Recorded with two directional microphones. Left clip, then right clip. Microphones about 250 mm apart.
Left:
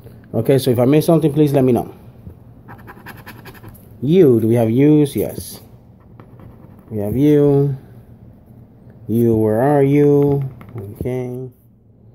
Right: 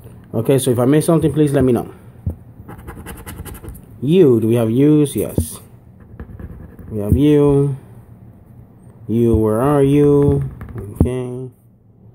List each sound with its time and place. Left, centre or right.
0.3 s speech: centre
4.0 s speech: centre
7.0 s speech: centre
9.1 s speech: right
9.4 s speech: centre
10.0 s speech: centre
11.1 s speech: centre